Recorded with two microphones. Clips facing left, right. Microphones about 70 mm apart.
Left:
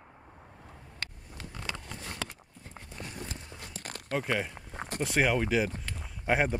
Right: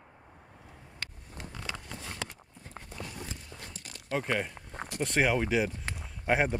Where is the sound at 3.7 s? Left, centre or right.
Left.